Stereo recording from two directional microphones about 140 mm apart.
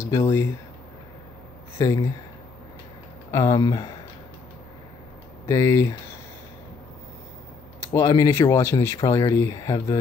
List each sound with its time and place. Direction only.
0.0 s speech: 20° left (ahead or behind)
1.8 s speech: 25° left (ahead or behind)
3.3 s speech: 20° left (ahead or behind)
5.5 s speech: 20° left (ahead or behind)
7.8 s speech: 25° left (ahead or behind)